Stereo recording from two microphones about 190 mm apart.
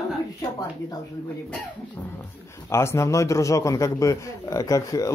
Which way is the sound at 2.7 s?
15° left (ahead or behind).